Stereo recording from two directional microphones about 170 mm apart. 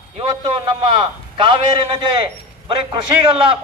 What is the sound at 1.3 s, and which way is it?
A man's voice, 30° right (ahead or behind).